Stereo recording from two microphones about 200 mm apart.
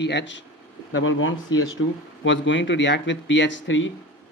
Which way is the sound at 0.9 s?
80° left.